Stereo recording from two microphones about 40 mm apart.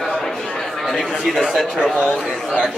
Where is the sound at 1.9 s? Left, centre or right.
Right.